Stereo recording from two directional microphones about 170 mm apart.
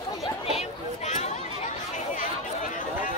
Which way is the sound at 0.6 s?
40° left (ahead or behind).